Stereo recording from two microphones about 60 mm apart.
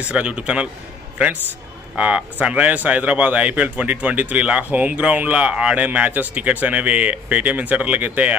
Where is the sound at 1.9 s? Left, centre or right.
Centre.